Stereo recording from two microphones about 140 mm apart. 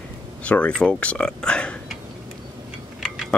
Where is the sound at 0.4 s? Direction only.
10° left (ahead or behind).